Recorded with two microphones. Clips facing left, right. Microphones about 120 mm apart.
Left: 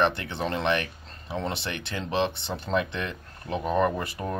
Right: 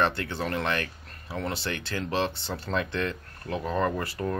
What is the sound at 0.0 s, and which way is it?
Speech, 20° left (ahead or behind).